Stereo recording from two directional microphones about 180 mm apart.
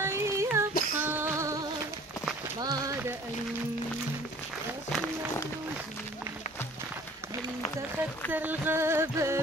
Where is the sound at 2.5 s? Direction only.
20° right (ahead or behind).